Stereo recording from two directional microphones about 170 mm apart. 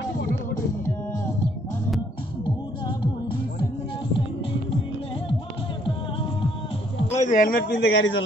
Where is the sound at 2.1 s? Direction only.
25° left (ahead or behind).